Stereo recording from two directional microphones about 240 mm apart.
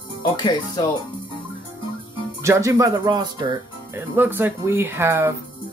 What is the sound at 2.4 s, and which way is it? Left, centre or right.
Speech, centre.